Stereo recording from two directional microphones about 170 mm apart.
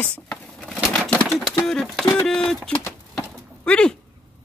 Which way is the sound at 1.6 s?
5° left (ahead or behind).